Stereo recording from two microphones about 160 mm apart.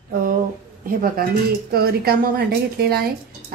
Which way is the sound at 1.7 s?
70° right (ahead or behind).